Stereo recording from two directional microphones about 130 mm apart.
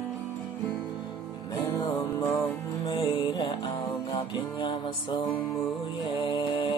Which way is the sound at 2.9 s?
35° left (ahead or behind).